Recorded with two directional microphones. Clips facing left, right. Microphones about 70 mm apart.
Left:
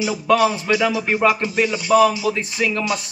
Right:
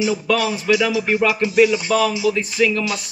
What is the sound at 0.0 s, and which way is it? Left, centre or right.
Speech, left.